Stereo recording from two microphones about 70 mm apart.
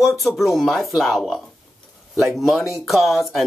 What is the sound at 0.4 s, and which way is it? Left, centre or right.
Speech, centre.